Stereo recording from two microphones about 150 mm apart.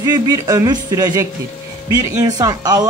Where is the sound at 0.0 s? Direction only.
25° right (ahead or behind).